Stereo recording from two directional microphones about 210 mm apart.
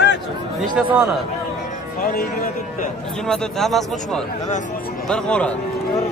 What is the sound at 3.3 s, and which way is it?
A man's voice, centre (ahead or behind).